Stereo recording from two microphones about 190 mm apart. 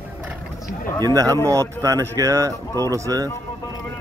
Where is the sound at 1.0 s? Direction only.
20° right (ahead or behind).